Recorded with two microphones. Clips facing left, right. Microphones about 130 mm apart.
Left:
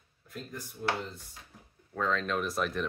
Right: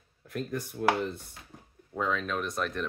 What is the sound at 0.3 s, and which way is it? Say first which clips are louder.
Speech: right 8 dB; 65° right (ahead or behind).